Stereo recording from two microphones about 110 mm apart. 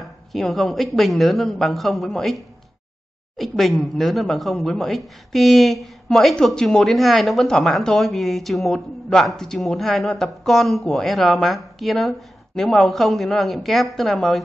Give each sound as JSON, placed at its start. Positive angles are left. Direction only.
{"t": 0.0, "sound": "speech", "side_deg": 0}